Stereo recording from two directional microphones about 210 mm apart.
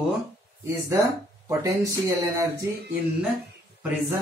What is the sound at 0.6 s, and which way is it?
Speech, 15° right (ahead or behind).